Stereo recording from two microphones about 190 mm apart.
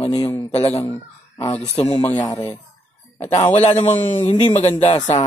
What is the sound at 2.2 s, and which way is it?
Speech, 15° left (ahead or behind).